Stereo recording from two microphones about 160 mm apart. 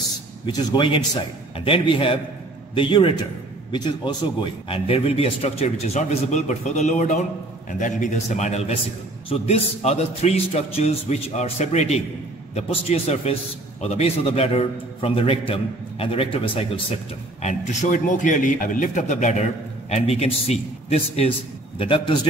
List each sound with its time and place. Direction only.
0.5 s a man's voice: 30° left (ahead or behind)
17.4 s a man's voice: 45° left (ahead or behind)